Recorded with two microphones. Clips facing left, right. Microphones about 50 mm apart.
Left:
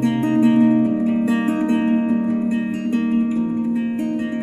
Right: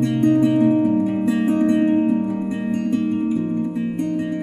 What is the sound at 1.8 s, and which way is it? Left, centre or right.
Music, left.